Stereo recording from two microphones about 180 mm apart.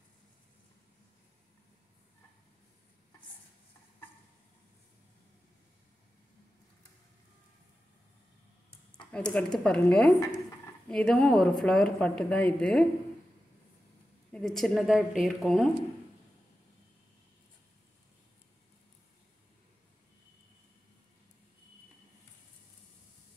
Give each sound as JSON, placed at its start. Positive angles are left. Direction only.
{"t": 8.6, "sound": "a sound", "side_deg": 25}
{"t": 9.1, "sound": "a woman's voice", "side_deg": 5}
{"t": 14.3, "sound": "a woman's voice", "side_deg": 0}